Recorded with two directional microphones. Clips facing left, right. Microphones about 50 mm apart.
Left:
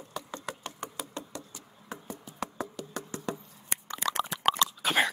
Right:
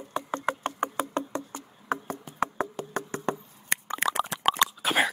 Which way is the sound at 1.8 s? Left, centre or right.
Right.